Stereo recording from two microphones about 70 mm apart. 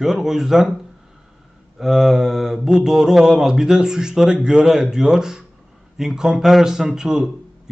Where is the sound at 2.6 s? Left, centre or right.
Centre.